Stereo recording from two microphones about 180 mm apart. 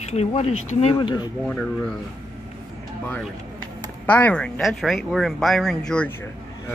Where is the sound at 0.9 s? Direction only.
25° left (ahead or behind).